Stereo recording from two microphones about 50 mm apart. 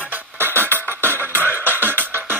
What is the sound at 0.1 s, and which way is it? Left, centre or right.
Music, right.